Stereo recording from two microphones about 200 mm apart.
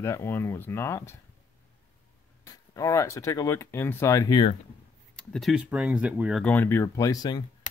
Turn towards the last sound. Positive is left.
turn(degrees=20)  # may be behind; listen again after turning